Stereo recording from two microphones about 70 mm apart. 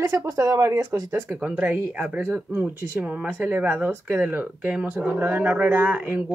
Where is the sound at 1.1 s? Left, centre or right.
Right.